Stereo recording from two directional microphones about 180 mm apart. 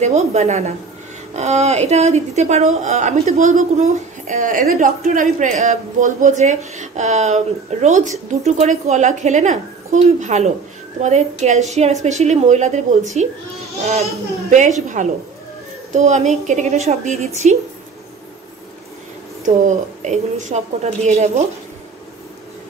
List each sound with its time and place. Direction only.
0.0 s a woman's voice: 40° right (ahead or behind)
15.0 s a woman's voice: 45° right (ahead or behind)
19.4 s a woman's voice: 45° right (ahead or behind)